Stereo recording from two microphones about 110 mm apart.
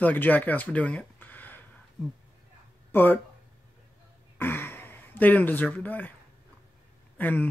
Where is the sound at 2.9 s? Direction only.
20° left (ahead or behind).